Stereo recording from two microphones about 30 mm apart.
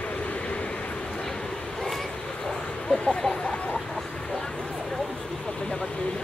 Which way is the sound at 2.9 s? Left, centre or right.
Left.